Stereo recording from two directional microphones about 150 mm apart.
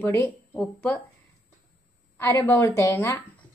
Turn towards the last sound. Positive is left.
turn(degrees=20)  # may be behind; listen again after turning